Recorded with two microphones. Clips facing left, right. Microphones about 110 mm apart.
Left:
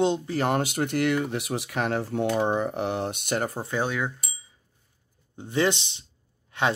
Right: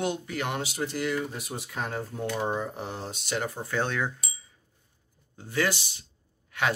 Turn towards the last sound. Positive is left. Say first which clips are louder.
# left 3 dB
turn(degrees=25)  # may be behind; listen again after turning